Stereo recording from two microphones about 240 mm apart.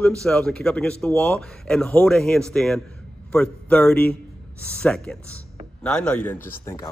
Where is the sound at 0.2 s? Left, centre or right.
Centre.